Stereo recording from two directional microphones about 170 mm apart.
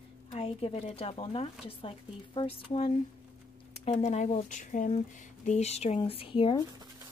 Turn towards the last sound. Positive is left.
turn(degrees=30)  # may be behind; listen again after turning